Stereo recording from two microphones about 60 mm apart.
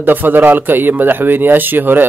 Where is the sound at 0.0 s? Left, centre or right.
Right.